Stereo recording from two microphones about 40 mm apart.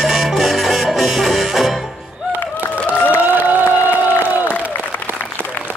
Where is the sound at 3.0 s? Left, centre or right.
Right.